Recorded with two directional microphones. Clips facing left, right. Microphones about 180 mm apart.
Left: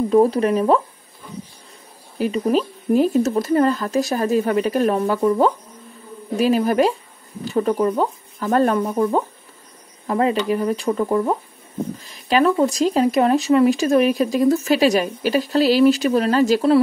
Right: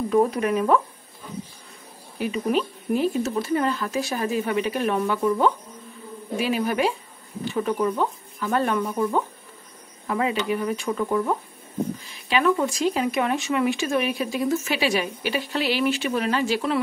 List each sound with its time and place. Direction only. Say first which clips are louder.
0.1 s speech: left 5 dB; 30° left (ahead or behind)
2.1 s speech: left 5 dB; 40° left (ahead or behind)